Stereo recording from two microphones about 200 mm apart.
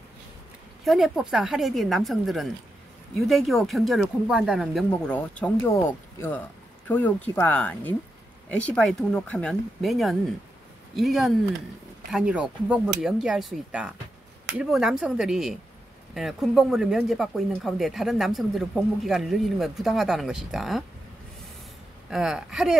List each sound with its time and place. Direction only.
0.8 s speech: centre (ahead or behind)
22.1 s speech: centre (ahead or behind)